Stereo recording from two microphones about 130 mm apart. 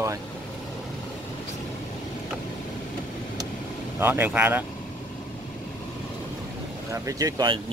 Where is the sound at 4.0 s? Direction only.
15° right (ahead or behind).